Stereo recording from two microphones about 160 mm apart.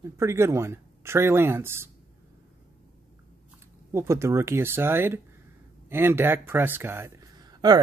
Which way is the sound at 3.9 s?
15° right (ahead or behind).